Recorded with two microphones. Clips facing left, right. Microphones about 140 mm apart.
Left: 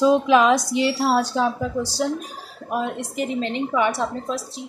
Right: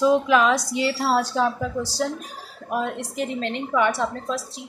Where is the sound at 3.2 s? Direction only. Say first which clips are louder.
Left 3 dB; 15° left (ahead or behind).